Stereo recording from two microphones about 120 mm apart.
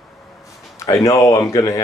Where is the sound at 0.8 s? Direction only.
25° left (ahead or behind).